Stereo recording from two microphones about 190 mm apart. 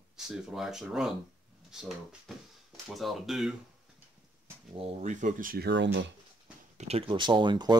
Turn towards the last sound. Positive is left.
turn(degrees=-25)  # may be behind; listen again after turning